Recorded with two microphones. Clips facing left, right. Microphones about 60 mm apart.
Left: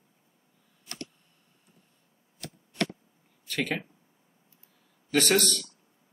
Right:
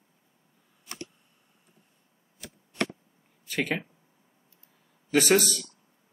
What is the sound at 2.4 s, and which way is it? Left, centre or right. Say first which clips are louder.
Chop: left 3 dB; centre.